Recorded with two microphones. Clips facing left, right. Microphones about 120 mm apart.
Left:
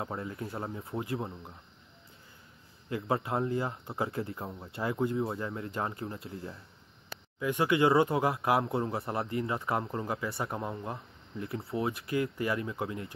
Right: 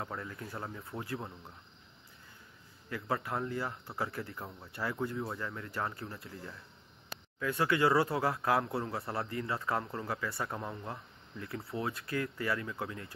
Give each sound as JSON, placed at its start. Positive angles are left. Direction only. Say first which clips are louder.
{"t": 0.0, "sound": "speech", "louder": "left 4 dB", "side_deg": 25}
{"t": 2.9, "sound": "speech", "louder": "left 4 dB", "side_deg": 25}